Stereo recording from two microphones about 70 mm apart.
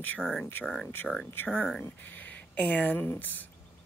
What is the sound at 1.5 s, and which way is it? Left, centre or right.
Speech, centre.